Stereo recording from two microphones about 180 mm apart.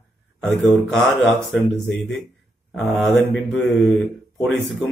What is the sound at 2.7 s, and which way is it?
A man's voice, 5° left (ahead or behind).